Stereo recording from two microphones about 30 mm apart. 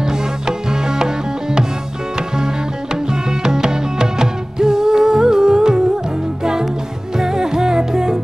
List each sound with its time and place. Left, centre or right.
0.0 s music: right
7.2 s music: centre